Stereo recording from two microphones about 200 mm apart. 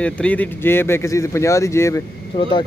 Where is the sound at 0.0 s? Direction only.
5° left (ahead or behind); by 2.5 s 25° left (ahead or behind).